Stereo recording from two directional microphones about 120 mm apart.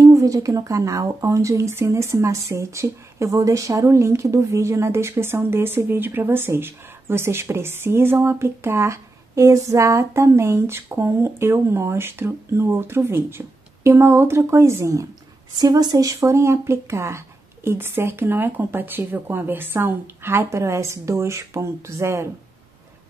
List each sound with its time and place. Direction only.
0.0 s speech: 25° right (ahead or behind)